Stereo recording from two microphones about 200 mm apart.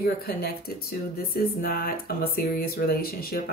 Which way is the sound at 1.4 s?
50° left (ahead or behind).